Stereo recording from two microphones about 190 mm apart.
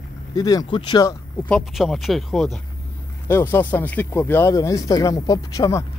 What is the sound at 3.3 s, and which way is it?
Speech, 10° left (ahead or behind).